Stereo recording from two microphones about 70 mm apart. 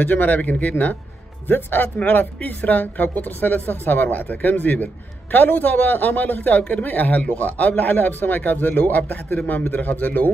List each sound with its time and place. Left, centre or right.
0.0 s speech: left